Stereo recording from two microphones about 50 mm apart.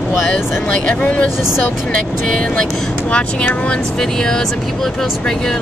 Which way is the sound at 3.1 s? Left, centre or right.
Left.